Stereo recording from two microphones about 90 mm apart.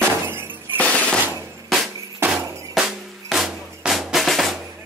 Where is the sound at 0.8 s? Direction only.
15° left (ahead or behind).